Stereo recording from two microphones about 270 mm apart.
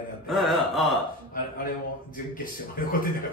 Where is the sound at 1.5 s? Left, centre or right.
Left.